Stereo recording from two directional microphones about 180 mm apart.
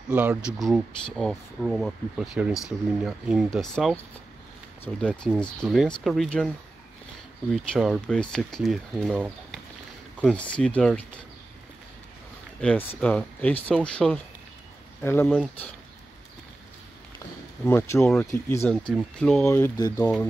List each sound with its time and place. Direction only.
0.1 s speech: 10° right (ahead or behind)
7.5 s speech: centre (ahead or behind)
12.5 s speech: 5° left (ahead or behind)
15.2 s speech: 5° right (ahead or behind)
17.6 s speech: 15° left (ahead or behind)
19.4 s speech: 15° left (ahead or behind)